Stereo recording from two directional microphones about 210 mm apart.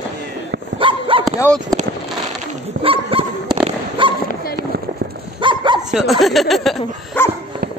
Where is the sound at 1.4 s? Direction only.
5° left (ahead or behind).